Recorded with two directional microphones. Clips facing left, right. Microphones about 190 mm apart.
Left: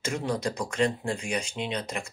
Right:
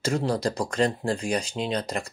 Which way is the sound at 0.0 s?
35° right (ahead or behind).